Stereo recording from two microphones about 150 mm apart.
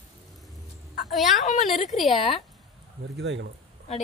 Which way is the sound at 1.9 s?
Centre (ahead or behind).